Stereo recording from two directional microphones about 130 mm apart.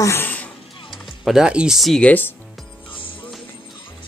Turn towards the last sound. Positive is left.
turn(degrees=40)  # may be behind; listen again after turning